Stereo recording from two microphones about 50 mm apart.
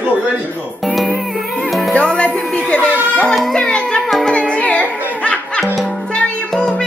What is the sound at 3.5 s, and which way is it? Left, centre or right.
Music, centre.